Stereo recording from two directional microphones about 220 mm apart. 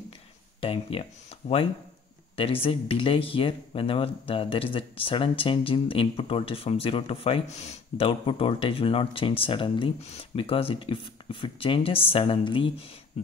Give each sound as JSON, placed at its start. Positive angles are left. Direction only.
{"t": 0.6, "sound": "speech", "side_deg": 25}